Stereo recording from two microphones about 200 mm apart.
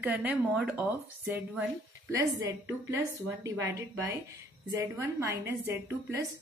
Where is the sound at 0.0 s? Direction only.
10° right (ahead or behind).